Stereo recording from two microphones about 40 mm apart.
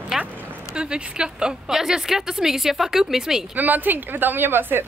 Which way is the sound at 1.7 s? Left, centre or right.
Centre.